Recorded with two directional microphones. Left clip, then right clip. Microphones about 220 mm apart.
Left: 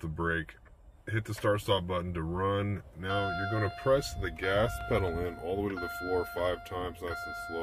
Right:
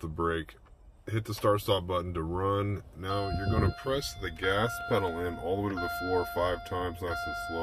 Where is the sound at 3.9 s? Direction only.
20° left (ahead or behind).